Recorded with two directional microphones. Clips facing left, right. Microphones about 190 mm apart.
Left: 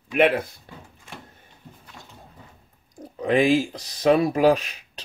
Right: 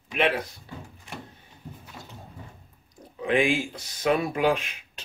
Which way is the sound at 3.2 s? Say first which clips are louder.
Left 5 dB; 40° left (ahead or behind).